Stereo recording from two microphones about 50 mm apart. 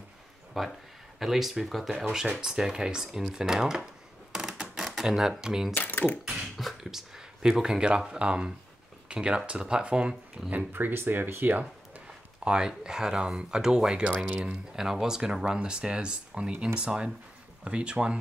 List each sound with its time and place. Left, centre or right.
0.5 s speech: centre
2.4 s speech: centre
4.3 s a sound: centre
4.9 s speech: centre
5.8 s speech: left
6.5 s speech: centre; by 10.1 s right
10.5 s speech: right
12.4 s speech: centre